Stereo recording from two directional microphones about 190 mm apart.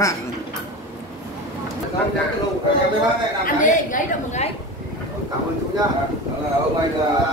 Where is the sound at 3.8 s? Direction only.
40° left (ahead or behind).